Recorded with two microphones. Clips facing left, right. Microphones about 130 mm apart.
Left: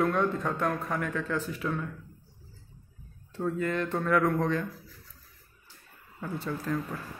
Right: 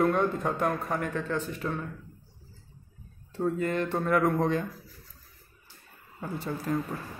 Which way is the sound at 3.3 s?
5° right (ahead or behind).